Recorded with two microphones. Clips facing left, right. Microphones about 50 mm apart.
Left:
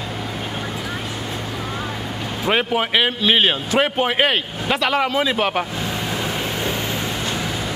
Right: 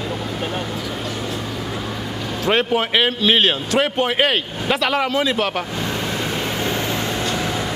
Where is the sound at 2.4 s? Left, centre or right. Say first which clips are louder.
Right 1 dB; centre.